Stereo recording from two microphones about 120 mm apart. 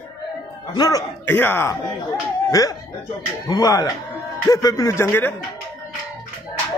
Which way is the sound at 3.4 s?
35° left (ahead or behind).